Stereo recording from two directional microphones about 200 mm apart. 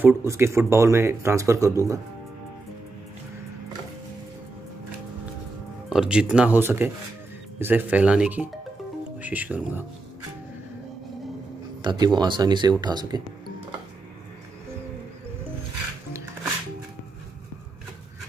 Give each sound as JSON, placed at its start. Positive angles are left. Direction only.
{"t": 0.0, "sound": "speech", "side_deg": -15}
{"t": 5.9, "sound": "speech", "side_deg": -5}
{"t": 11.8, "sound": "speech", "side_deg": -20}